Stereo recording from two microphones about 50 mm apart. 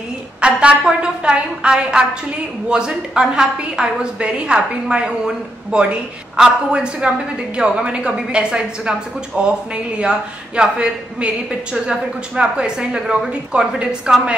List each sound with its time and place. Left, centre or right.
0.4 s a woman's voice: right